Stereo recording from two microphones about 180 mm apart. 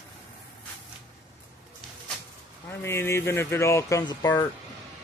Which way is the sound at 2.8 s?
15° left (ahead or behind).